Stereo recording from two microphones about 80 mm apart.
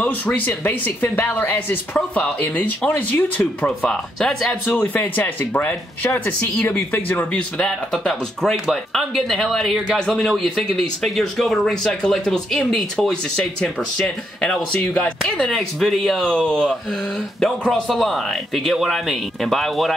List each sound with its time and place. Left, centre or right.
0.7 s speech: left; by 4.6 s centre
4.6 s speech: left
7.3 s speech: centre